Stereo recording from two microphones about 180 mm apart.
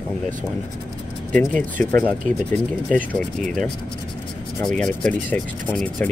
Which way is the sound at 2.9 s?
45° right (ahead or behind).